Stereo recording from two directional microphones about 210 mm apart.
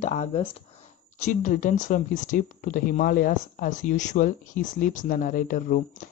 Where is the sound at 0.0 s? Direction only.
30° left (ahead or behind).